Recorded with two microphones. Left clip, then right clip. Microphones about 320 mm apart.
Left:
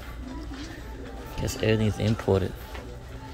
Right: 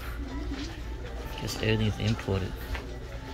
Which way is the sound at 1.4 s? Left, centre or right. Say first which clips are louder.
Left 4 dB; centre.